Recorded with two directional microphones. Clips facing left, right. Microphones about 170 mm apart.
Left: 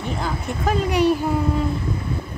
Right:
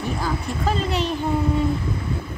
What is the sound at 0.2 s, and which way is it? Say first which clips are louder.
Speech: even; 15° left (ahead or behind).